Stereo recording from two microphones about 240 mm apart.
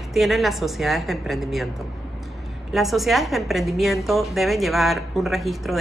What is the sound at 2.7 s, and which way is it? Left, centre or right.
A woman's voice, centre.